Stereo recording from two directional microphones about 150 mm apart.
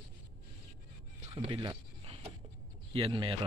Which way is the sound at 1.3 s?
35° right (ahead or behind).